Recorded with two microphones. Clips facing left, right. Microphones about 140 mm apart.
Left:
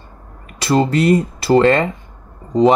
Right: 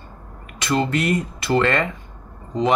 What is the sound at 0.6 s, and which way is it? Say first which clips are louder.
Speech: left 6 dB; 35° left (ahead or behind).